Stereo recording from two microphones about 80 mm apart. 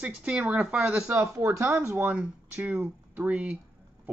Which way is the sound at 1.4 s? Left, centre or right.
Right.